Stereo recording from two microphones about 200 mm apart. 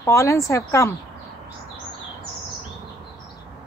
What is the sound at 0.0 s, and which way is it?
Speech, 15° left (ahead or behind).